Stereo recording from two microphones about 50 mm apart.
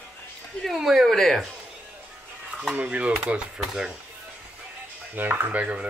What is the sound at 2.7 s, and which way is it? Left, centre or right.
Speech, right.